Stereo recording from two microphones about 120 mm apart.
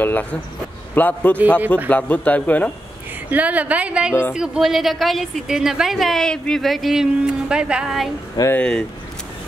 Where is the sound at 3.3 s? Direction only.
10° right (ahead or behind).